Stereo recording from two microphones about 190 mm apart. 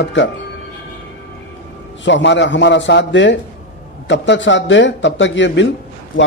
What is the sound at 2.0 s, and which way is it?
A man's voice, 70° left (ahead or behind).